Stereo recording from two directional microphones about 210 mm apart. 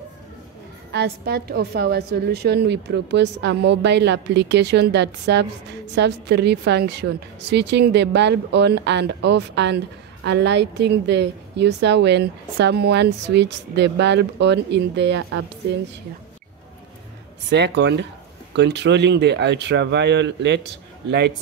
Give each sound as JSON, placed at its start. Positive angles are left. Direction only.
{"t": 0.9, "sound": "a woman's voice", "side_deg": -50}
{"t": 17.5, "sound": "a woman's voice", "side_deg": -55}